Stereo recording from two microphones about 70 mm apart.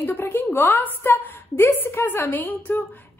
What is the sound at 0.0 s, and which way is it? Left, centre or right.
A woman's voice, left.